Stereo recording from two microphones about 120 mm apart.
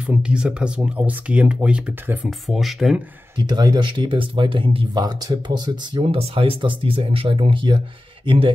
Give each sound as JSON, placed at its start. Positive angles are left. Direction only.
{"t": 0.0, "sound": "speech", "side_deg": -10}
{"t": 3.3, "sound": "speech", "side_deg": -35}